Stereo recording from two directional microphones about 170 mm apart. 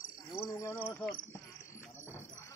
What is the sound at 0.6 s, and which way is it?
Speech, 15° left (ahead or behind).